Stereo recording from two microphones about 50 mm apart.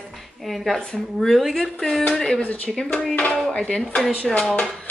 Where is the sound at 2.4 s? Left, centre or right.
Left.